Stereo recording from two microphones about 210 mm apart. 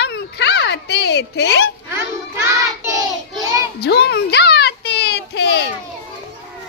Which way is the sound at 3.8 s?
50° left (ahead or behind).